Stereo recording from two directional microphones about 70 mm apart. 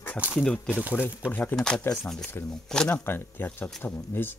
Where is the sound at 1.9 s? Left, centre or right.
Centre.